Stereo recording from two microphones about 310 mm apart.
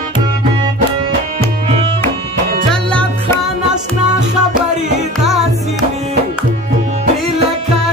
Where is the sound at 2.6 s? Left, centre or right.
Centre.